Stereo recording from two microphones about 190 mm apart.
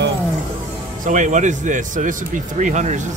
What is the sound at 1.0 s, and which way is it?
Speech, 40° right (ahead or behind).